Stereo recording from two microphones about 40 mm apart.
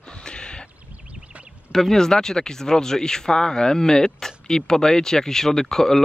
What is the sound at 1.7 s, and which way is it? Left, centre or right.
Speech, centre.